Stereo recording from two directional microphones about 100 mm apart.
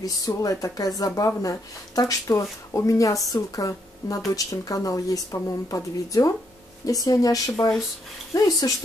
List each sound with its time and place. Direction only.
0.0 s speech: 40° left (ahead or behind)